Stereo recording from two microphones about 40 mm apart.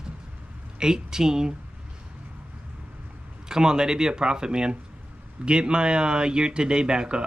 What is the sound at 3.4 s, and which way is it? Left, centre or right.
Speech, centre.